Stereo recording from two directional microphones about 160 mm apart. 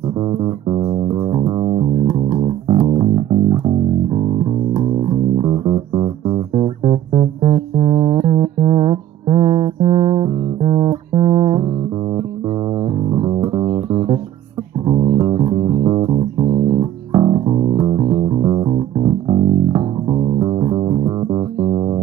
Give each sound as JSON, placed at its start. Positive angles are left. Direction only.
{"t": 0.7, "sound": "music", "side_deg": -30}
{"t": 13.3, "sound": "music", "side_deg": -20}
{"t": 17.1, "sound": "bass guitar", "side_deg": -30}
{"t": 20.7, "sound": "music", "side_deg": -30}